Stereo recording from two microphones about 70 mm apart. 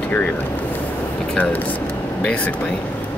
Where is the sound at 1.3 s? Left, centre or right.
Left.